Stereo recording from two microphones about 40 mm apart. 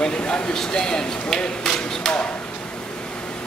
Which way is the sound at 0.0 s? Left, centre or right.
Centre.